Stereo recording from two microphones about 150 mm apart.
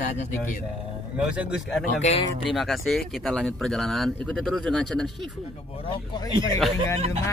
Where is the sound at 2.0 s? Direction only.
45° left (ahead or behind).